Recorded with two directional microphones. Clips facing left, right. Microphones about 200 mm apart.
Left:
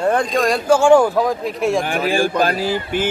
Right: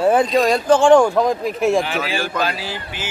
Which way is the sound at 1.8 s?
50° left (ahead or behind).